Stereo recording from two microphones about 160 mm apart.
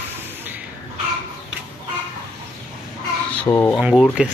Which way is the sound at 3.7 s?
5° right (ahead or behind).